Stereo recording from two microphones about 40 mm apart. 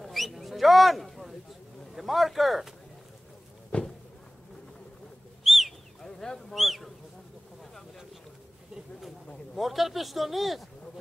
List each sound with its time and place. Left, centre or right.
0.0 s a sound: centre
2.0 s speech: centre
3.7 s walk: left
5.4 s bird: centre
5.7 s a sound: centre
6.5 s speech: centre
9.6 s speech: centre